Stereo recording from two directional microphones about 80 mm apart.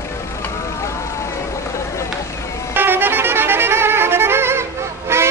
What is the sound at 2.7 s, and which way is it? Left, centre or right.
Music, right.